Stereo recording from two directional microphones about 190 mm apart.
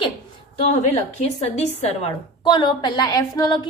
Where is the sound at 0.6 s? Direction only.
35° left (ahead or behind).